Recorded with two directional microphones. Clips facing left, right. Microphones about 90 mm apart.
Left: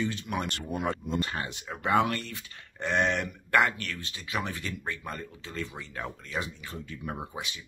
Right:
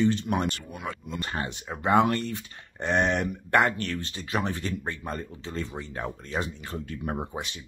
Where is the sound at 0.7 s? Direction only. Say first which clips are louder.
Left 5 dB; 45° left (ahead or behind).